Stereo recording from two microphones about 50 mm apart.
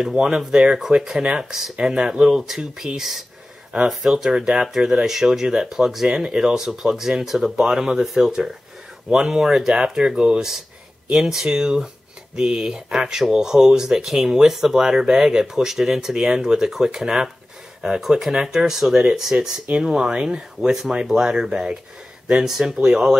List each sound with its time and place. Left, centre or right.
0.0 s speech: centre
6.0 s speech: centre